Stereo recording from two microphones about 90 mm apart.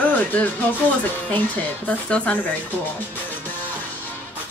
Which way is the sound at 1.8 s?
15° left (ahead or behind).